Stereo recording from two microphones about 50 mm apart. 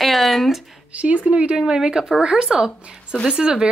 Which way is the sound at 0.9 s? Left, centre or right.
Right.